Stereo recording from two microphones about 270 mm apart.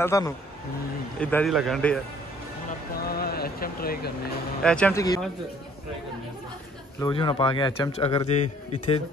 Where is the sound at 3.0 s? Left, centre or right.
Left.